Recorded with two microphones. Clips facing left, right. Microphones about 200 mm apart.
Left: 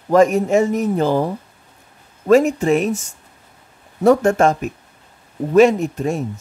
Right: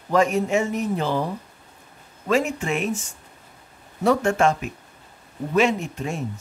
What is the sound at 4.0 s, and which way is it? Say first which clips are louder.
Speech: left 6 dB; 45° left (ahead or behind).